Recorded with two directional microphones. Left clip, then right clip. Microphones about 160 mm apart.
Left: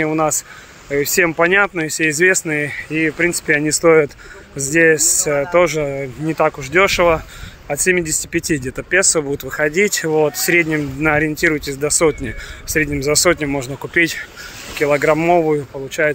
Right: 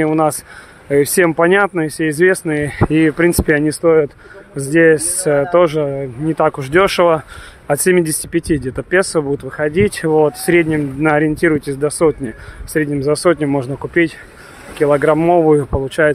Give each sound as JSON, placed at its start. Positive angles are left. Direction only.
{"t": 0.0, "sound": "speech", "side_deg": -25}
{"t": 2.9, "sound": "speech", "side_deg": -45}
{"t": 3.4, "sound": "speech", "side_deg": -30}
{"t": 3.8, "sound": "speech", "side_deg": -5}
{"t": 4.6, "sound": "speech", "side_deg": -25}
{"t": 5.9, "sound": "speech", "side_deg": -15}
{"t": 6.3, "sound": "speech", "side_deg": -30}
{"t": 6.6, "sound": "speech", "side_deg": -40}
{"t": 7.6, "sound": "speech", "side_deg": -45}
{"t": 8.3, "sound": "speech", "side_deg": -20}
{"t": 13.7, "sound": "speech", "side_deg": -15}